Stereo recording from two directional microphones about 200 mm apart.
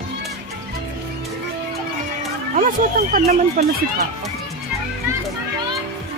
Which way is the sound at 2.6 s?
45° right (ahead or behind).